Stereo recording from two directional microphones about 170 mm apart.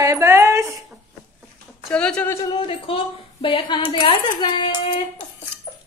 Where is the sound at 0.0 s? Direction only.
15° right (ahead or behind).